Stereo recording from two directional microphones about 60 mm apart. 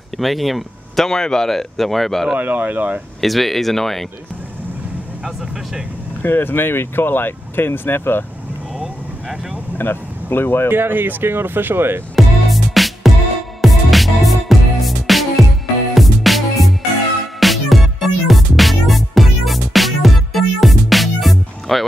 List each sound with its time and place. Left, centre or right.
0.2 s speech: centre
2.3 s speech: right
3.2 s speech: centre
6.2 s speech: left
8.7 s vehicle: centre
9.8 s speech: left
10.7 s speech: right
12.7 s music: centre